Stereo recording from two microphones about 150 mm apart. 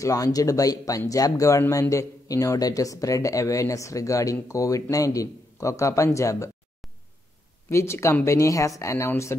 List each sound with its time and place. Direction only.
0.0 s speech: 25° left (ahead or behind)
7.7 s speech: 20° left (ahead or behind)